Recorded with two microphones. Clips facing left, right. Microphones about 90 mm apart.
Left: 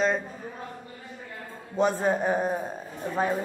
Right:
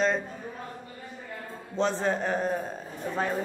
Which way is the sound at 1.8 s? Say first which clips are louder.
Left 3 dB; 10° left (ahead or behind).